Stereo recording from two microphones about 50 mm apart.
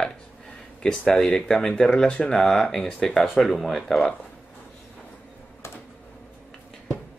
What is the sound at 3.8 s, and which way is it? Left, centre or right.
Speech, centre.